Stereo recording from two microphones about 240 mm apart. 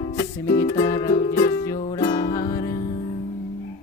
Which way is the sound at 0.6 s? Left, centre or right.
Centre.